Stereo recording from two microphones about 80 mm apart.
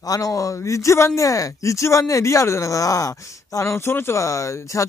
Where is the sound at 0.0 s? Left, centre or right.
Left.